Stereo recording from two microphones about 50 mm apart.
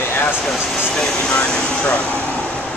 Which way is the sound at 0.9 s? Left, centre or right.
Centre.